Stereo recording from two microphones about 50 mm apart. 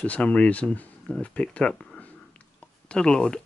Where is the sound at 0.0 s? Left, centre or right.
Left.